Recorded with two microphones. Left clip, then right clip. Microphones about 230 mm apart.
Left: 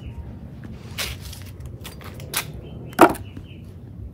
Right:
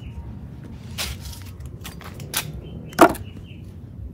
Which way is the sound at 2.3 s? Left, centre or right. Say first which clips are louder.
Even; centre.